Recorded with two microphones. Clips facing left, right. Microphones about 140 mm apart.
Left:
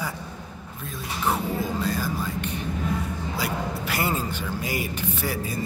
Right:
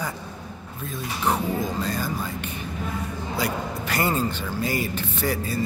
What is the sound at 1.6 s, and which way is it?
Speech, 5° left (ahead or behind).